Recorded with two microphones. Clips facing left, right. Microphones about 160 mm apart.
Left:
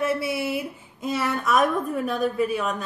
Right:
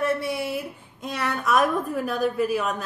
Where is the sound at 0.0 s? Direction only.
5° left (ahead or behind).